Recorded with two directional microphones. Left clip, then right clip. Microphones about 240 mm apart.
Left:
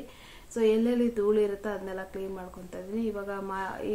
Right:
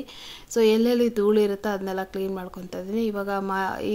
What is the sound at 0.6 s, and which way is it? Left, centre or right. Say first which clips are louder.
A woman's voice: right 6 dB; right.